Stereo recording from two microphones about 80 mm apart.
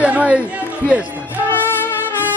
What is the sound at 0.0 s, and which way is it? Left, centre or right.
Chatter, centre.